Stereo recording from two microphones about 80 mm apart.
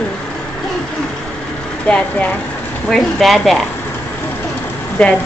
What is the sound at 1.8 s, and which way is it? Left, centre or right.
A woman's voice, centre.